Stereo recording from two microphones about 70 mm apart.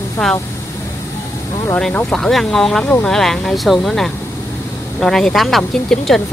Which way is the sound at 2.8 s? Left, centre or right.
Centre.